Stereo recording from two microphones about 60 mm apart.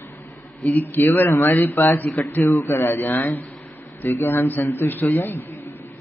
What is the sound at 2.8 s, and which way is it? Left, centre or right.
Speech, left.